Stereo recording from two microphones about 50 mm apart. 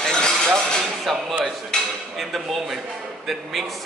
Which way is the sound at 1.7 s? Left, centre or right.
Centre.